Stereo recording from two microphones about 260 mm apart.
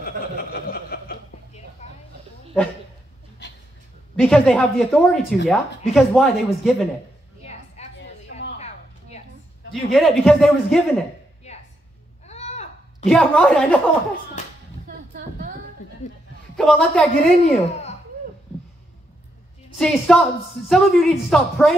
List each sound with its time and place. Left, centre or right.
0.0 s chuckle: left
1.8 s a sound: left
2.6 s speech: centre
4.2 s speech: centre
7.4 s a sound: left
9.7 s speech: centre
12.3 s a sound: left
13.0 s speech: centre
14.9 s music: right
16.5 s speech: centre
19.8 s speech: centre